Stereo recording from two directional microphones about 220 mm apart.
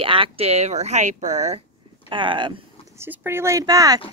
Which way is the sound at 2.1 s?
20° right (ahead or behind).